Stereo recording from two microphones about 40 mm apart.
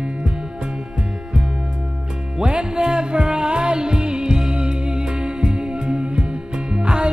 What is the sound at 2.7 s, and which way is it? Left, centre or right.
Music, centre.